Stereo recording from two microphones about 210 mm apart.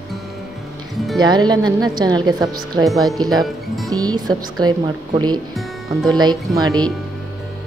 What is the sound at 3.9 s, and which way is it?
Speech, 20° right (ahead or behind).